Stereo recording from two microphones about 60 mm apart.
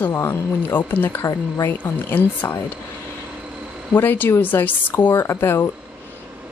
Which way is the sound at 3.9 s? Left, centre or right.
Left.